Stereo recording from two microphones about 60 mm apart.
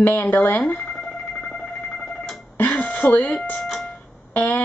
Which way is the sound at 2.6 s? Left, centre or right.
Left.